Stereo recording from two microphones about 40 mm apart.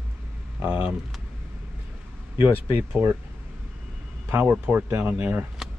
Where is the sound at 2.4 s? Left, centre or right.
Right.